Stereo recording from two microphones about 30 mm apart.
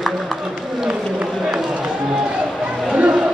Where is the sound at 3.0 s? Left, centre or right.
Right.